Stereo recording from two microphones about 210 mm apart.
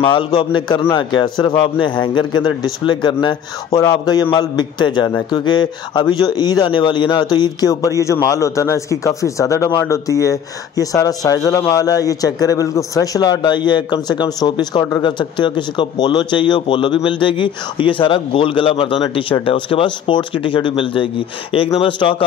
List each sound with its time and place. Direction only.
0.0 s a man's voice: 25° left (ahead or behind)